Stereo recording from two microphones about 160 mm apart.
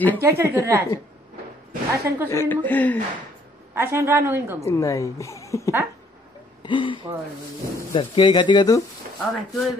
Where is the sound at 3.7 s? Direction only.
15° right (ahead or behind).